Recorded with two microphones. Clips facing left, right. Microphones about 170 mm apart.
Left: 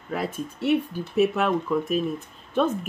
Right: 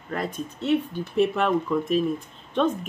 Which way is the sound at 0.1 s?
5° left (ahead or behind).